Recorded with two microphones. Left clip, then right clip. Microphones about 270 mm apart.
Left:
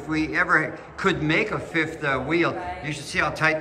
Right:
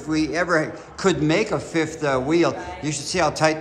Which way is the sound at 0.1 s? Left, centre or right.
Centre.